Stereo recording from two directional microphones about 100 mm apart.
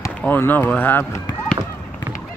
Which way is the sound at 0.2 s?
20° left (ahead or behind).